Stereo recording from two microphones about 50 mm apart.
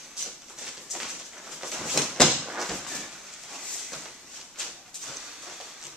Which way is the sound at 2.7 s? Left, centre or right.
Centre.